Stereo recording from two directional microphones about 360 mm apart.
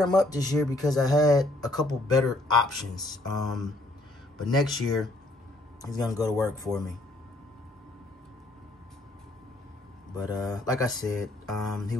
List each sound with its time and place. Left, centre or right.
0.0 s speech: centre
10.1 s speech: centre